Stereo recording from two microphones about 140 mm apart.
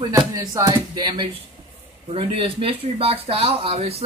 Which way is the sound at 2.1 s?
40° right (ahead or behind).